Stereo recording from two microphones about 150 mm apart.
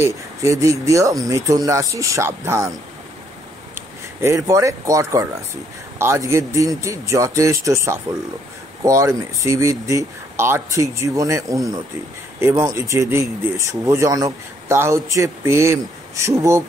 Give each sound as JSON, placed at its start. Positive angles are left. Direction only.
{"t": 0.0, "sound": "speech", "side_deg": -20}
{"t": 3.7, "sound": "speech", "side_deg": -20}